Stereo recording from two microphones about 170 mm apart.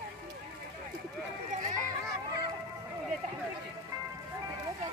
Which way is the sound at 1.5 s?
50° right (ahead or behind).